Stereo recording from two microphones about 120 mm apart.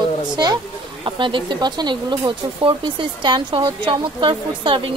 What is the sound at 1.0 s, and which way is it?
Speech, 45° right (ahead or behind).